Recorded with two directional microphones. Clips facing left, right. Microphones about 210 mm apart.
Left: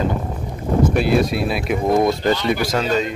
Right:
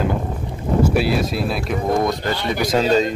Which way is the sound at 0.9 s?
5° right (ahead or behind).